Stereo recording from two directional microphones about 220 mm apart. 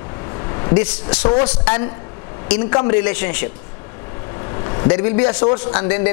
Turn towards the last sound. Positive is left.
turn(degrees=20)  # may be behind; listen again after turning